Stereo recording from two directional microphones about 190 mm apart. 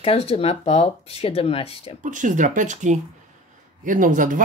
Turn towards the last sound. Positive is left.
turn(degrees=-45)  # may be behind; listen again after turning